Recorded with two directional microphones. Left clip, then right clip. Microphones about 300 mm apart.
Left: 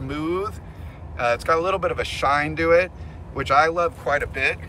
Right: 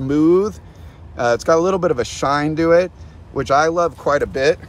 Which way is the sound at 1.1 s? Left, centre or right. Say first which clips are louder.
Right 5 dB; centre.